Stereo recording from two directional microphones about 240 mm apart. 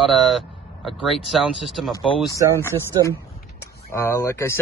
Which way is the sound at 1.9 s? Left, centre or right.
Left.